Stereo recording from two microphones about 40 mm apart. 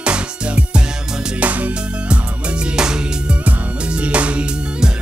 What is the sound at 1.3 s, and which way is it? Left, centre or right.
Music, right.